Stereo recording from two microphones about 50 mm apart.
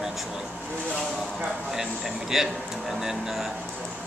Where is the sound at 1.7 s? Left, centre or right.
Centre.